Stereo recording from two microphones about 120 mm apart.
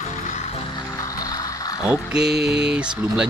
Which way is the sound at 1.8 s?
5° right (ahead or behind).